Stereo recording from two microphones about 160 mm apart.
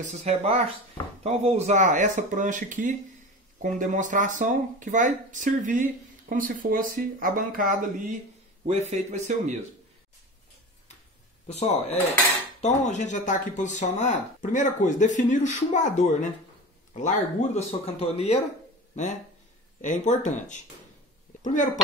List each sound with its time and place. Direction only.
0.0 s speech: 45° right (ahead or behind); by 7.7 s 60° right (ahead or behind)
8.6 s speech: 45° right (ahead or behind)
11.4 s speech: 45° left (ahead or behind)
19.8 s speech: 50° left (ahead or behind)